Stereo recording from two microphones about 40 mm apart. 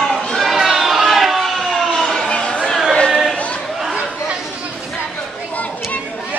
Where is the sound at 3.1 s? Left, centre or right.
Centre.